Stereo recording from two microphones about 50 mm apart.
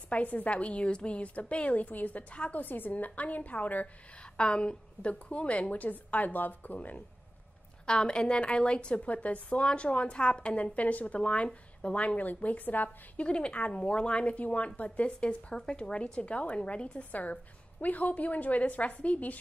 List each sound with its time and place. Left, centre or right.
0.1 s speech: left
2.6 s a woman's voice: left
4.4 s speech: centre
7.8 s speech: centre; by 13.3 s left
13.3 s speech: left